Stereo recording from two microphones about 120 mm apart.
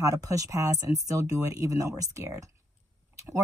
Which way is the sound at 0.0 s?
30° right (ahead or behind).